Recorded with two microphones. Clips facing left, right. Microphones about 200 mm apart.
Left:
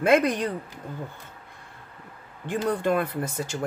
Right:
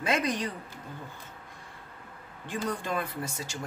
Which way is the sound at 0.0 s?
55° left (ahead or behind).